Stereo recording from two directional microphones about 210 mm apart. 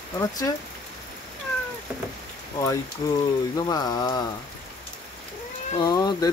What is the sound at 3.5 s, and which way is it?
Speech, 20° left (ahead or behind).